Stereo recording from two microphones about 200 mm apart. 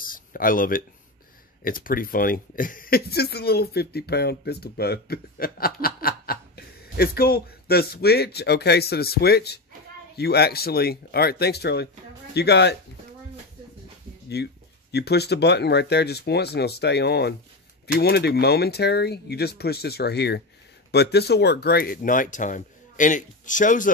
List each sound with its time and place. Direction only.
0.0 s a sound: 45° left (ahead or behind)
1.6 s speech: 45° left (ahead or behind)
14.3 s speech: 55° left (ahead or behind); by 23.9 s 40° left (ahead or behind)